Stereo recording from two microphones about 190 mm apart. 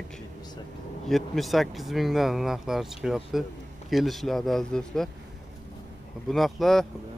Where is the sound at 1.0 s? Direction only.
Centre (ahead or behind).